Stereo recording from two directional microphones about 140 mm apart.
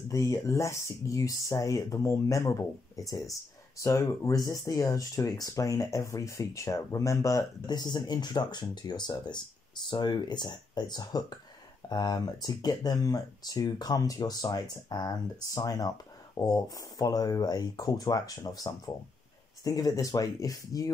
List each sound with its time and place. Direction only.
0.1 s speech: 20° left (ahead or behind)